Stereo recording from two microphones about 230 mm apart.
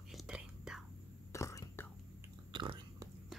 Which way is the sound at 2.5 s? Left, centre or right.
Right.